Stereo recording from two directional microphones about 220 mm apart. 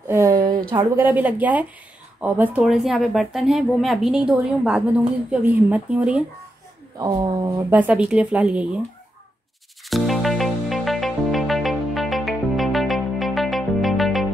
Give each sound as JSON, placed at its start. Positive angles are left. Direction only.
{"t": 0.1, "sound": "a sound", "side_deg": -15}
{"t": 0.7, "sound": "a woman's voice", "side_deg": -15}
{"t": 7.0, "sound": "a woman's voice", "side_deg": -15}
{"t": 9.8, "sound": "music", "side_deg": 0}